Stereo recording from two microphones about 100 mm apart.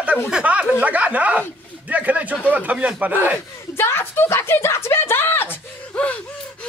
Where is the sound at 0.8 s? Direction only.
15° right (ahead or behind).